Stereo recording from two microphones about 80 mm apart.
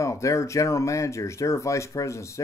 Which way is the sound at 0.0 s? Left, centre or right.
Left.